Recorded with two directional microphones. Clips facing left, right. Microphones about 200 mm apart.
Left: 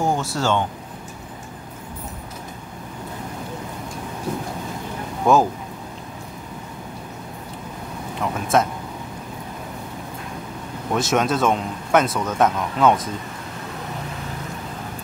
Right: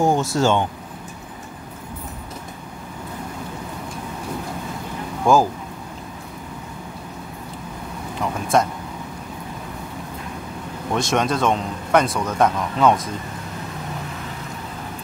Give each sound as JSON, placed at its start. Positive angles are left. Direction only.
{"t": 0.0, "sound": "air conditioning", "side_deg": -20}
{"t": 0.4, "sound": "speech", "side_deg": -15}
{"t": 5.2, "sound": "speech", "side_deg": 0}
{"t": 8.2, "sound": "speech", "side_deg": 0}
{"t": 10.9, "sound": "speech", "side_deg": 5}